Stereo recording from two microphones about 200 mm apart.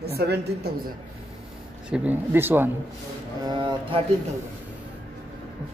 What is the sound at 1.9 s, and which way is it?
Speech, 10° right (ahead or behind).